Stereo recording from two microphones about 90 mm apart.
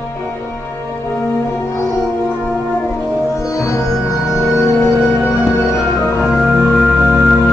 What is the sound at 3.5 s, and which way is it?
Music, 35° left (ahead or behind).